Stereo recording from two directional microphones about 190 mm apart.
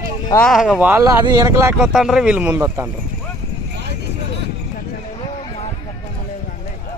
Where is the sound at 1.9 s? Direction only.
Centre (ahead or behind).